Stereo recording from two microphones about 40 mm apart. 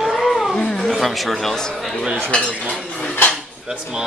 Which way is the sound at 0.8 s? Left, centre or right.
Centre.